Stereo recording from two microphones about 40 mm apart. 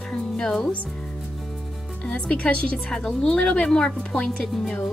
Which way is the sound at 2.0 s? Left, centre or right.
Left.